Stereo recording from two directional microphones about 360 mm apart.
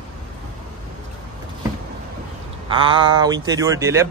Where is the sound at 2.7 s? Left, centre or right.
Centre.